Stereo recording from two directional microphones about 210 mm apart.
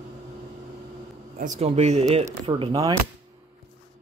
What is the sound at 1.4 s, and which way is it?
Speech, 35° right (ahead or behind).